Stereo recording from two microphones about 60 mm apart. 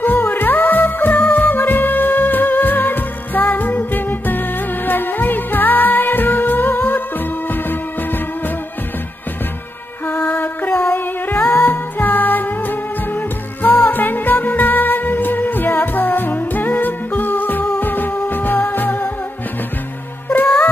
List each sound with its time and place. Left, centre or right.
0.0 s music: left
10.0 s music: left
20.2 s music: left